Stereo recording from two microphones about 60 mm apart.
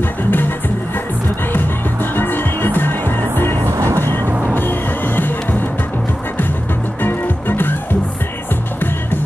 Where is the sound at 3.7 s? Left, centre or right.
Right.